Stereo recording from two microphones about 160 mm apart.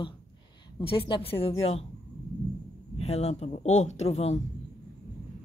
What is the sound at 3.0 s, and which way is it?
Speech, 40° left (ahead or behind).